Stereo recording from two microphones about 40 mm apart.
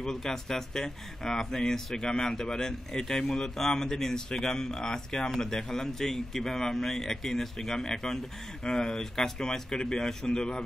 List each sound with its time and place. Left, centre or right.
0.0 s speech: centre